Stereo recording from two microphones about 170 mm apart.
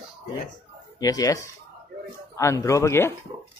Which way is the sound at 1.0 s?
20° left (ahead or behind).